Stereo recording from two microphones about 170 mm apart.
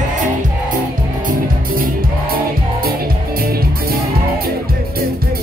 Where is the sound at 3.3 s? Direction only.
60° right (ahead or behind).